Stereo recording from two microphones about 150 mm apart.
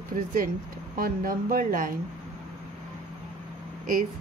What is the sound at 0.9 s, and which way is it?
Speech, 75° right (ahead or behind).